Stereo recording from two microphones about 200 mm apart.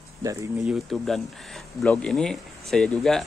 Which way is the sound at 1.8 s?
5° left (ahead or behind).